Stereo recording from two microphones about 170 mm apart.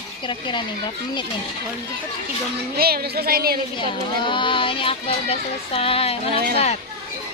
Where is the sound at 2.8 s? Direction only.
65° right (ahead or behind).